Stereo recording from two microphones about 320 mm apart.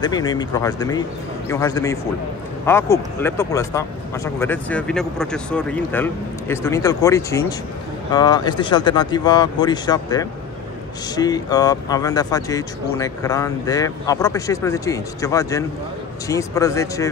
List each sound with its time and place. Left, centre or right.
0.0 s speech: centre